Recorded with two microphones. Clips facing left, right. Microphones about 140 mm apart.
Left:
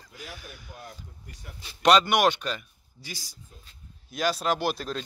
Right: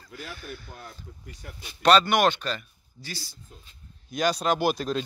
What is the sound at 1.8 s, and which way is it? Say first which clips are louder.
Speech: right 1 dB; 15° left (ahead or behind).